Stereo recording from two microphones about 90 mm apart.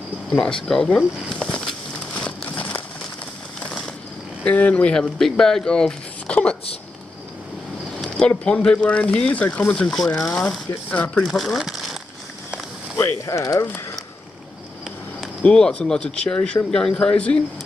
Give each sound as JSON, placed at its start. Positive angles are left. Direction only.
{"t": 0.3, "sound": "speech", "side_deg": 10}
{"t": 2.1, "sound": "crumpling", "side_deg": 15}
{"t": 3.5, "sound": "a sound", "side_deg": 5}
{"t": 4.5, "sound": "speech", "side_deg": 15}
{"t": 8.0, "sound": "speech", "side_deg": 10}
{"t": 11.2, "sound": "speech", "side_deg": 0}
{"t": 12.9, "sound": "speech", "side_deg": 35}
{"t": 15.4, "sound": "speech", "side_deg": 10}